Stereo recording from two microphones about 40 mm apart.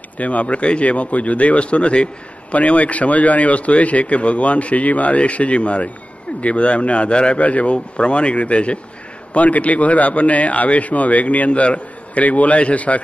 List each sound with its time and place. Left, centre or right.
0.2 s a man's voice: left